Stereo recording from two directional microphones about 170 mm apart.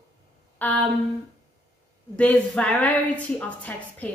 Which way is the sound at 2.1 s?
5° left (ahead or behind).